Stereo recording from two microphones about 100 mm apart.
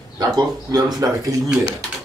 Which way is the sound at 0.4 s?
40° right (ahead or behind).